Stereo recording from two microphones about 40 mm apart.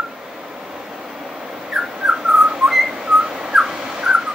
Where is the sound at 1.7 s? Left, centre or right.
Centre.